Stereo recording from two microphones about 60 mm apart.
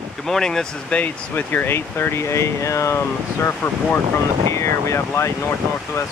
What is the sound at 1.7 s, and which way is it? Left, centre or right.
Speech, left.